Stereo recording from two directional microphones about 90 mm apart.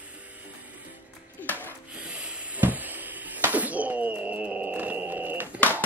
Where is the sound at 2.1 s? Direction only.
15° right (ahead or behind).